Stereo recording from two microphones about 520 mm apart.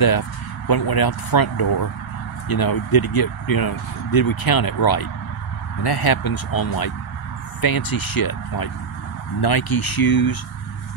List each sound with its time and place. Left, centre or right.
0.0 s speech: left